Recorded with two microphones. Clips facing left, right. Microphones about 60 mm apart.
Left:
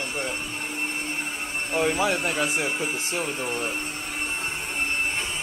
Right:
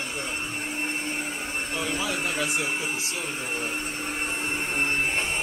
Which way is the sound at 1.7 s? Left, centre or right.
Left.